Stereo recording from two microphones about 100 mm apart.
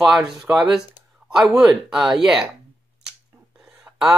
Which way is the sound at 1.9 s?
5° right (ahead or behind).